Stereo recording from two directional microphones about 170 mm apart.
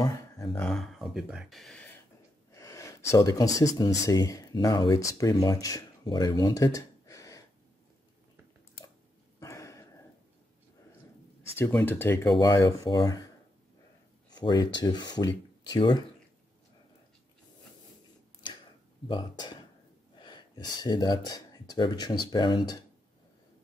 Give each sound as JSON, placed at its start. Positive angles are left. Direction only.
{"t": 0.5, "sound": "speech", "side_deg": 5}
{"t": 2.5, "sound": "speech", "side_deg": 20}
{"t": 9.4, "sound": "a sound", "side_deg": 15}
{"t": 11.5, "sound": "speech", "side_deg": 10}
{"t": 14.3, "sound": "speech", "side_deg": 25}
{"t": 19.0, "sound": "speech", "side_deg": 25}